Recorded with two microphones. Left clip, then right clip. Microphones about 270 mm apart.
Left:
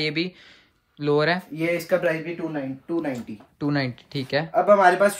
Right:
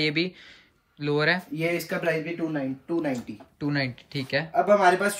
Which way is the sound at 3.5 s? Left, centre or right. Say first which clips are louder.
Left 3 dB; centre.